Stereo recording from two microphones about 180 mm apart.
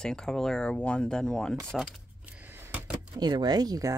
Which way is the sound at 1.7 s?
5° right (ahead or behind).